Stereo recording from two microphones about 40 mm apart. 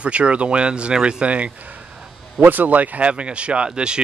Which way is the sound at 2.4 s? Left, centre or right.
Right.